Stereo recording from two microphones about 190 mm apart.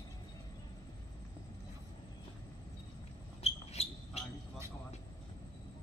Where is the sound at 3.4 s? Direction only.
35° left (ahead or behind).